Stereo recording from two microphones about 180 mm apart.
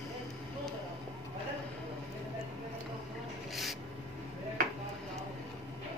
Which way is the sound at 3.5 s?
Centre (ahead or behind).